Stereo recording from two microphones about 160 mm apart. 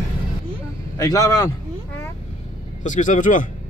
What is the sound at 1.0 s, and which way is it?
Speech, 20° left (ahead or behind).